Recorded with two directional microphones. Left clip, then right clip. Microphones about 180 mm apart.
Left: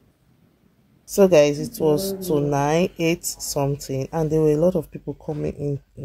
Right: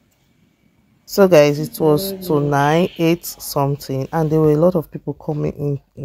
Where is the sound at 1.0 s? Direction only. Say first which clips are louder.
Right 4 dB; 20° right (ahead or behind).